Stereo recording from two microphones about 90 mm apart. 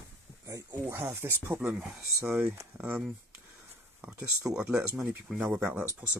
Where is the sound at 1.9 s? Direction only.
30° right (ahead or behind).